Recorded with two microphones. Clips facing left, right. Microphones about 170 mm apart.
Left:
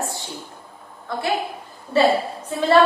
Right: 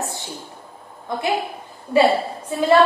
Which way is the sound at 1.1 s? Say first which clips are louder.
Right 1 dB; 20° right (ahead or behind).